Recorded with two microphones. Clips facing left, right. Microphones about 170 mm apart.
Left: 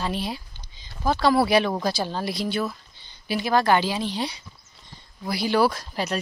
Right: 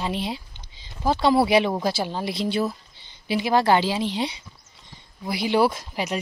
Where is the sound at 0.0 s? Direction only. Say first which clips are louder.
Right 1 dB; 20° right (ahead or behind).